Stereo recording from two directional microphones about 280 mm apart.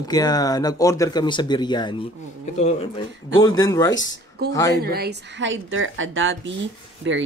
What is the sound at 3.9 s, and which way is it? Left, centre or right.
Speech, left.